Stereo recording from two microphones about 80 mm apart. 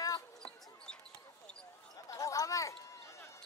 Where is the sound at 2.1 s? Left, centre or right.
Left.